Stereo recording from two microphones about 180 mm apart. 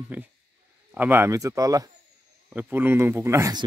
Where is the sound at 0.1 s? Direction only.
10° right (ahead or behind).